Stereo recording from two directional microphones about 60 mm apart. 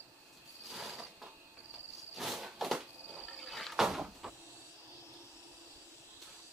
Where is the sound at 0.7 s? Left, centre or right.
Centre.